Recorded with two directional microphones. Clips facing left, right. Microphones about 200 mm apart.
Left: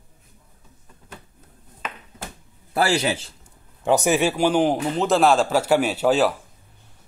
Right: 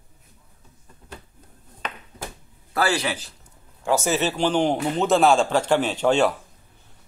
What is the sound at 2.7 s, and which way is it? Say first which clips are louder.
A man's voice: left 2 dB; 25° left (ahead or behind).